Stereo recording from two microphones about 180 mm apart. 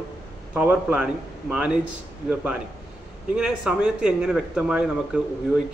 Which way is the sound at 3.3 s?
5° right (ahead or behind).